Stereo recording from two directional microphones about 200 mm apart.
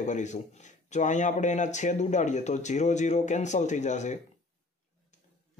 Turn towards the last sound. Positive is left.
turn(degrees=35)  # may be behind; listen again after turning